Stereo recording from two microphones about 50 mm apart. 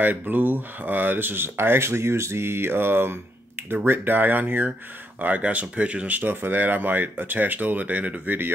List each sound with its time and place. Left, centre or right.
0.0 s speech: right